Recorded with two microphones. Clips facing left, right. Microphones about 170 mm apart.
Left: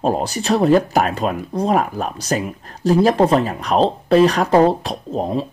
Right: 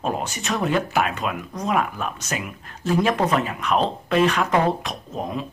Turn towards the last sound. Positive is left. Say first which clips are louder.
# left 7 dB
turn(degrees=30)  # may be behind; listen again after turning